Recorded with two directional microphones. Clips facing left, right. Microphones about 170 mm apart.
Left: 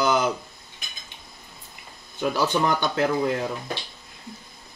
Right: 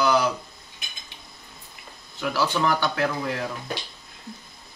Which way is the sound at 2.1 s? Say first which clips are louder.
Left 2 dB; 20° left (ahead or behind).